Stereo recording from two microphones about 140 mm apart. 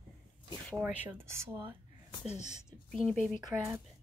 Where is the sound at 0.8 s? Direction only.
10° right (ahead or behind).